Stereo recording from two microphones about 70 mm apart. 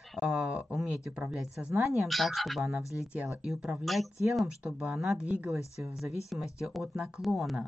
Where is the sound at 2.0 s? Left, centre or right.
Centre.